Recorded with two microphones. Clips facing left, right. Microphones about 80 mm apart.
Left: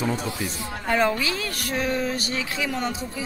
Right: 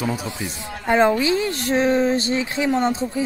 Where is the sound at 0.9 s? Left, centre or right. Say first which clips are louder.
Right 6 dB; right.